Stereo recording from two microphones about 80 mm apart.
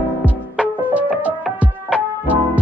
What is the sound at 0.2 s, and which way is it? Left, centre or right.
Music, centre.